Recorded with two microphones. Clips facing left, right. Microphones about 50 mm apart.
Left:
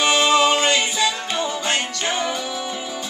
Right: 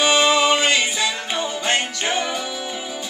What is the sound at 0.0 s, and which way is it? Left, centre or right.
Music, centre.